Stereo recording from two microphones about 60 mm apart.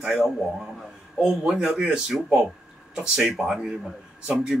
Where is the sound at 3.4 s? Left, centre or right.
Centre.